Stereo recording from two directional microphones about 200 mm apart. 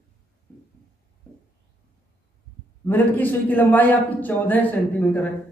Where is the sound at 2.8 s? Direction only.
10° left (ahead or behind).